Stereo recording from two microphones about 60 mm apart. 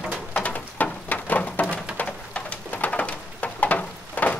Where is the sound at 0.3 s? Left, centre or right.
Left.